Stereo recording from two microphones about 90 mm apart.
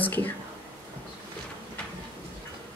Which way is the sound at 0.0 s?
20° left (ahead or behind).